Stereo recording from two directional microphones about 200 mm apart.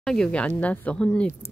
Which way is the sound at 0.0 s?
5° left (ahead or behind).